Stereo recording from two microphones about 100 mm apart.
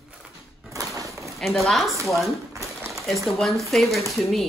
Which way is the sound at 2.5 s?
30° right (ahead or behind).